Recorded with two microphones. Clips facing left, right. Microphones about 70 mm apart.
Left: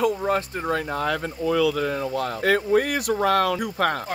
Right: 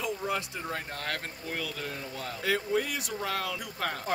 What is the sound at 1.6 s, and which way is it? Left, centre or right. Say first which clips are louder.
Speech: left 15 dB; left.